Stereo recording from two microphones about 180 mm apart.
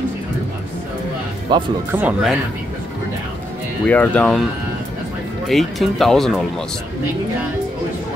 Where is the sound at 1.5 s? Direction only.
25° right (ahead or behind).